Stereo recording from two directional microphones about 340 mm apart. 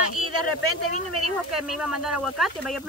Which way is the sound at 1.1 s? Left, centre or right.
Right.